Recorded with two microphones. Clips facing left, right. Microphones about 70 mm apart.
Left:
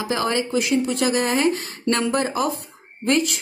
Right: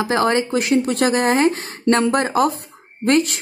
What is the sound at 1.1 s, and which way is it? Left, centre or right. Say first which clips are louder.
A woman's voice: right 4 dB; right.